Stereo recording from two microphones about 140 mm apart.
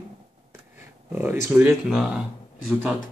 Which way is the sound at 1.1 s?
15° right (ahead or behind).